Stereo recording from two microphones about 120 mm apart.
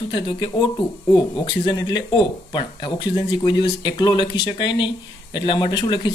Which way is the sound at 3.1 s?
40° left (ahead or behind).